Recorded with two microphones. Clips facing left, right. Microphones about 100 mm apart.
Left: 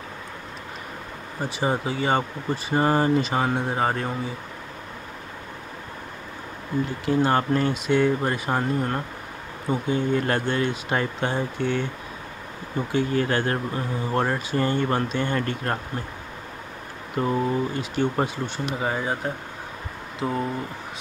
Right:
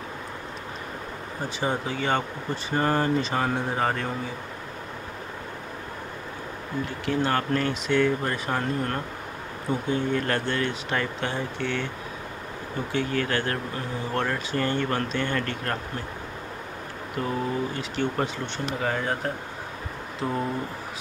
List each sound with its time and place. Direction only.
1.6 s speech: 10° left (ahead or behind)
7.1 s speech: 20° left (ahead or behind)
12.9 s speech: 20° left (ahead or behind)
17.2 s speech: 15° left (ahead or behind)